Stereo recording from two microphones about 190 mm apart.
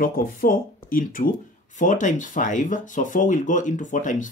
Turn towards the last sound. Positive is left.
turn(degrees=40)  # may be behind; listen again after turning